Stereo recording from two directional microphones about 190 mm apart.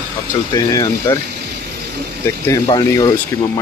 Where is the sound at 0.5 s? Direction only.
20° left (ahead or behind).